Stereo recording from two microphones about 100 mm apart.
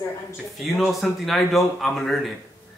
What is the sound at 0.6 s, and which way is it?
A man's voice, centre (ahead or behind).